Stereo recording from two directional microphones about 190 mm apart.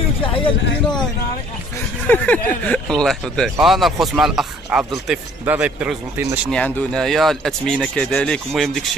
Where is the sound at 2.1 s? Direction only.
10° left (ahead or behind).